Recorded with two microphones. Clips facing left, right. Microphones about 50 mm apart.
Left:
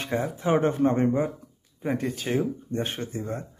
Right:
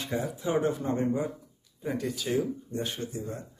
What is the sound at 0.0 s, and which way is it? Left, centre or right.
Speech, left.